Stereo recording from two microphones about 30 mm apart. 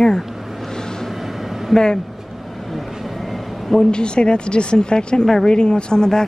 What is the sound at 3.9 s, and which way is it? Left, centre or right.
Speech, left.